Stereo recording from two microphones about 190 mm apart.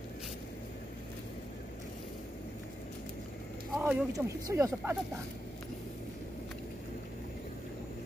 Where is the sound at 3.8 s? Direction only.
5° right (ahead or behind).